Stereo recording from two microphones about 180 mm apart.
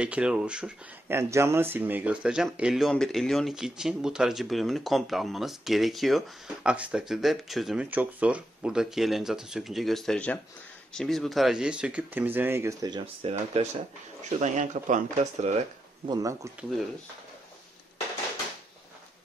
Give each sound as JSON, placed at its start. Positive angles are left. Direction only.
{"t": 0.0, "sound": "speech", "side_deg": -5}
{"t": 13.0, "sound": "speech", "side_deg": -35}
{"t": 16.1, "sound": "speech", "side_deg": -20}